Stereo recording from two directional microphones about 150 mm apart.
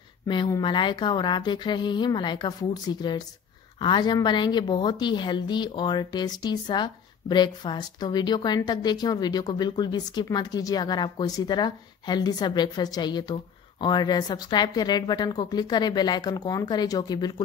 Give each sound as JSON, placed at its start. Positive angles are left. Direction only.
{"t": 0.3, "sound": "speech", "side_deg": 30}